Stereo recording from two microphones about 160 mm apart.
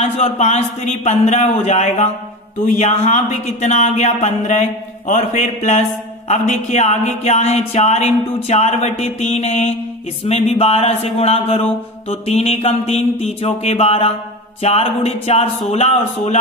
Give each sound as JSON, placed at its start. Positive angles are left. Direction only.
{"t": 0.0, "sound": "speech", "side_deg": 45}
{"t": 10.2, "sound": "mantra", "side_deg": 40}
{"t": 15.7, "sound": "speech", "side_deg": 40}